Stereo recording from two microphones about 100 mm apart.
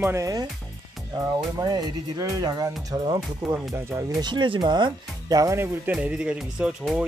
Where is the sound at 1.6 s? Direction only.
40° right (ahead or behind).